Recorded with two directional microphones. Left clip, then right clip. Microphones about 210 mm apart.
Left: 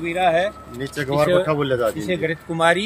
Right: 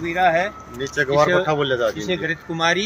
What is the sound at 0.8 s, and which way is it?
Speech, 55° left (ahead or behind).